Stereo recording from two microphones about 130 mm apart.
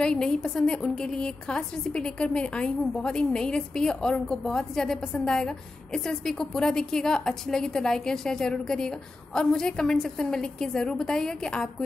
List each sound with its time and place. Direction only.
0.0 s a woman's voice: 5° left (ahead or behind)